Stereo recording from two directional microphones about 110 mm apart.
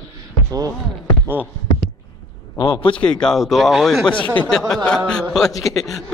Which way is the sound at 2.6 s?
50° left (ahead or behind).